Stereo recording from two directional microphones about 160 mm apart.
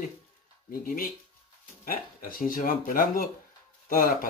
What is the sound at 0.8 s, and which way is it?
Speech, 60° left (ahead or behind).